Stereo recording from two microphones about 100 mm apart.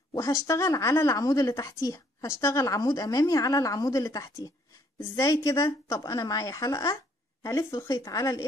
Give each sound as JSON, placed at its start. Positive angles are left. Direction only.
{"t": 0.1, "sound": "a woman's voice", "side_deg": 30}